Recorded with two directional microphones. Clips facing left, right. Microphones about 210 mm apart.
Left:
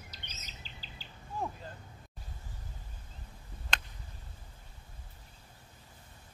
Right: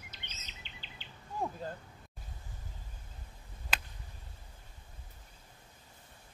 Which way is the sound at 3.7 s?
5° right (ahead or behind).